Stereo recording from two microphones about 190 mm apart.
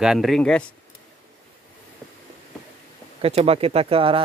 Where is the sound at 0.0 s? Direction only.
Centre (ahead or behind).